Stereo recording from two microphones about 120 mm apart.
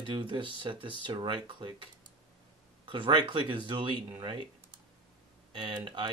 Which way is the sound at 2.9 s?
45° right (ahead or behind).